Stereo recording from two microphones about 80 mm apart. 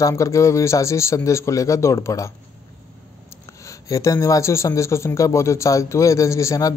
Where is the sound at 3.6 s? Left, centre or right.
Left.